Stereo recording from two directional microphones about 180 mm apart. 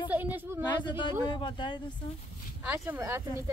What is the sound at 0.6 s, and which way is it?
Speech, 25° left (ahead or behind).